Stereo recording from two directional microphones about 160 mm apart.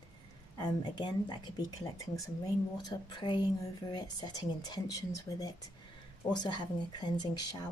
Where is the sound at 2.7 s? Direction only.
25° left (ahead or behind).